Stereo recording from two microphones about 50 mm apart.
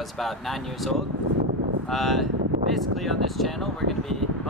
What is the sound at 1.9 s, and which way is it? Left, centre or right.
Speech, centre.